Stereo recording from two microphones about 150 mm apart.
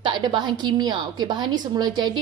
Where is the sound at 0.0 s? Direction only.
30° right (ahead or behind).